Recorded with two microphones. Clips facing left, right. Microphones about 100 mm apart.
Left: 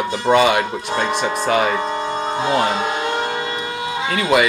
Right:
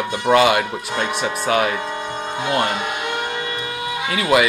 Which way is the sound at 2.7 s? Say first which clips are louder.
Left 4 dB; 25° left (ahead or behind).